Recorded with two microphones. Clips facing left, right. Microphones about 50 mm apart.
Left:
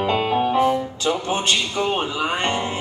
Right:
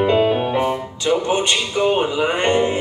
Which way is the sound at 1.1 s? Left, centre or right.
Centre.